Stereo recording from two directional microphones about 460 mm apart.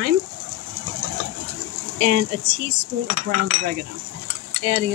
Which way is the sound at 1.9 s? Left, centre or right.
Centre.